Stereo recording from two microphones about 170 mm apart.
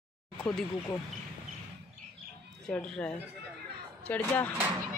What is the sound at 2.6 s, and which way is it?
A man's voice, 5° left (ahead or behind).